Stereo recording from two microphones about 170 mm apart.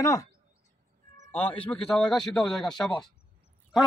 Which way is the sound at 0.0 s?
20° left (ahead or behind).